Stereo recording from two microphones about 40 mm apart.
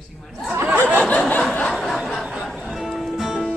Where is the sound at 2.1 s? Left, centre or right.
Centre.